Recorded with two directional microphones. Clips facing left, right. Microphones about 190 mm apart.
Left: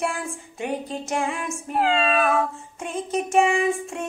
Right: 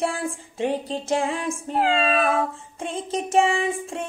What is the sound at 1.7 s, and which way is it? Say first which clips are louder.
Meow: even; centre (ahead or behind).